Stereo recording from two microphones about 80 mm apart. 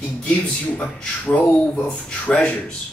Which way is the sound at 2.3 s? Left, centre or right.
Centre.